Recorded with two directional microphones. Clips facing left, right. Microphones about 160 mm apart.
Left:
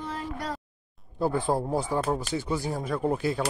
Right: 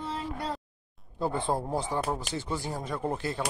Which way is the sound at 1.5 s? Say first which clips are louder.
Left 3 dB; 5° left (ahead or behind).